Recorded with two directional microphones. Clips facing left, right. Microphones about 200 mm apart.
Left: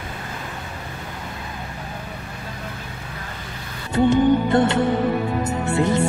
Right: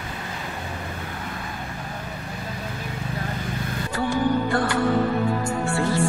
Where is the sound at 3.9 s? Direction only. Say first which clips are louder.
Left 7 dB; 20° left (ahead or behind).